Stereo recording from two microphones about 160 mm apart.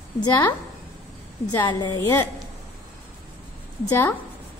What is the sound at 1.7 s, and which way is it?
Speech, 25° left (ahead or behind).